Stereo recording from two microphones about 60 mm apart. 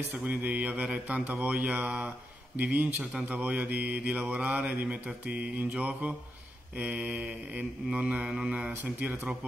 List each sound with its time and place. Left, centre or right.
0.1 s mantra: right